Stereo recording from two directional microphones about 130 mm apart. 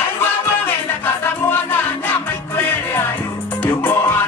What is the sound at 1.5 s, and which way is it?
Music, 15° left (ahead or behind).